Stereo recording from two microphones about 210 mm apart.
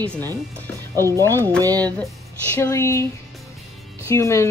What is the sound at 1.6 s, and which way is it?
Speech, 15° right (ahead or behind).